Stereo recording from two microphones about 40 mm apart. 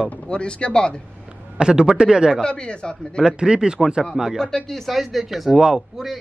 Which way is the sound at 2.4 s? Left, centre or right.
Left.